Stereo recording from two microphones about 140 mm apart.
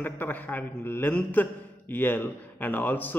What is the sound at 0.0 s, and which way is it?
A man's voice, 15° left (ahead or behind).